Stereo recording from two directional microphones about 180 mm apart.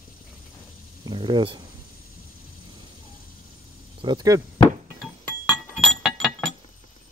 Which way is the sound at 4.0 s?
25° right (ahead or behind).